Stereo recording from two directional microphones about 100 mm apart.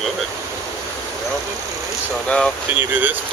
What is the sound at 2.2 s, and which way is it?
Speech, 5° left (ahead or behind).